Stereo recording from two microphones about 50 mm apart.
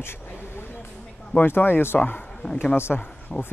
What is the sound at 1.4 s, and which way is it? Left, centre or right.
Speech, left.